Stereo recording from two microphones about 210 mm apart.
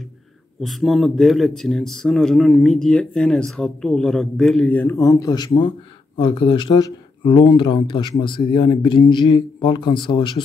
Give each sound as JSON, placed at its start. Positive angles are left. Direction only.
{"t": 0.6, "sound": "speech", "side_deg": 0}